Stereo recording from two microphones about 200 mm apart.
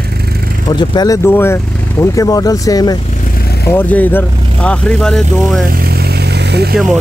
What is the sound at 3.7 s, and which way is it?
Speech, 10° left (ahead or behind).